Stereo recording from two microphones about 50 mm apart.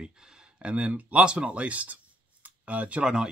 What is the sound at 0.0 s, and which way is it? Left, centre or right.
Speech, centre.